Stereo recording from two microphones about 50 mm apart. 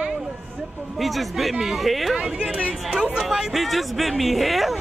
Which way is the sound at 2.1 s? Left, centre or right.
Centre.